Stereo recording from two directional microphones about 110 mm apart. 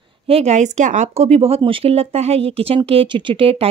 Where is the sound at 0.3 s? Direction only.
80° right.